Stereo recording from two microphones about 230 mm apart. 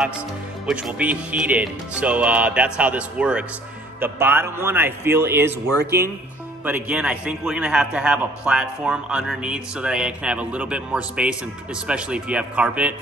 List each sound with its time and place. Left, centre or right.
0.7 s a man's voice: centre
5.9 s speech: right
6.6 s a man's voice: centre